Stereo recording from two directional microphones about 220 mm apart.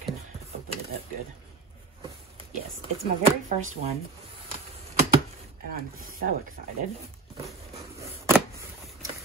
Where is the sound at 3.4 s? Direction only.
35° right (ahead or behind).